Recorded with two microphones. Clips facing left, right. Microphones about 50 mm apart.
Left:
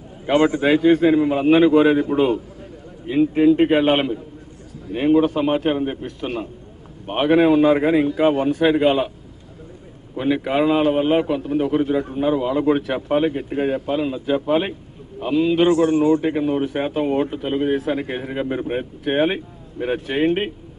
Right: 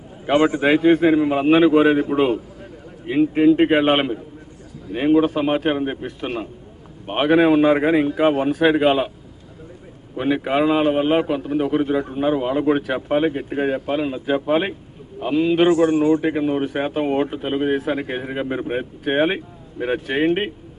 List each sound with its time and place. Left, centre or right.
0.3 s a man's voice: centre
10.1 s a man's voice: centre
12.4 s speech: right
12.6 s a man's voice: centre